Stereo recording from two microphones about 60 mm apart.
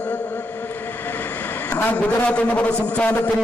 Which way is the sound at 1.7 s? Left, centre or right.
Left.